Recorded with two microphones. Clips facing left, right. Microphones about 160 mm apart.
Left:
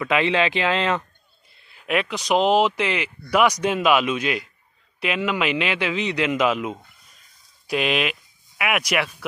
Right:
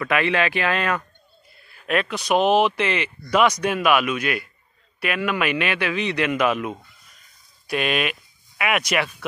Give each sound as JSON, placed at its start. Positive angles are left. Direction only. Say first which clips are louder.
{"t": 0.0, "sound": "a man's voice", "louder": "left 1 dB", "side_deg": 20}